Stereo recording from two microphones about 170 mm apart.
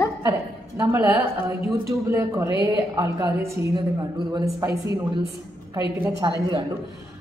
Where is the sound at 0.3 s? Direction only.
15° right (ahead or behind).